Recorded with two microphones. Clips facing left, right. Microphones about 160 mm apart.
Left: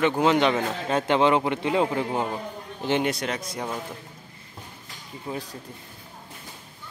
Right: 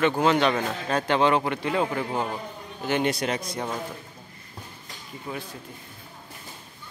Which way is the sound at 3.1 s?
5° right (ahead or behind).